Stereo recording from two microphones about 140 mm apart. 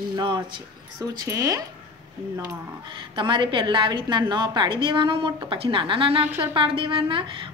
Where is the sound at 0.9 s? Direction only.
25° right (ahead or behind).